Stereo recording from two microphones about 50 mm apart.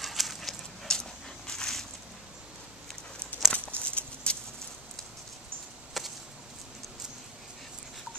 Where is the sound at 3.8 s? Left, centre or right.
Left.